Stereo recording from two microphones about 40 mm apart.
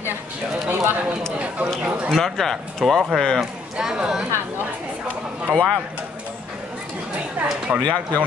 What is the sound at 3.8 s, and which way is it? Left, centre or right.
Speech, centre.